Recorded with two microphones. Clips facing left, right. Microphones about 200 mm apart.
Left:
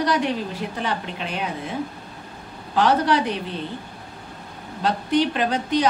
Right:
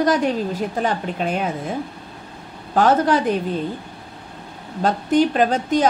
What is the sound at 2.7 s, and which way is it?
Speech, 45° right (ahead or behind).